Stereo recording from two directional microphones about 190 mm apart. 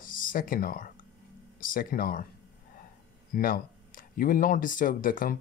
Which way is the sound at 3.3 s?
50° left (ahead or behind).